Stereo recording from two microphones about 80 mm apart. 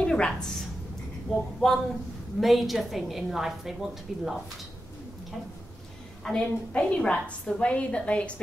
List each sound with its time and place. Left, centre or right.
0.0 s a woman's voice: centre
6.2 s a woman's voice: centre